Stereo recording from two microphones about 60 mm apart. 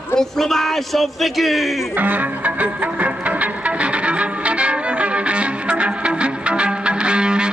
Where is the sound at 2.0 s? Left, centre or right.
Right.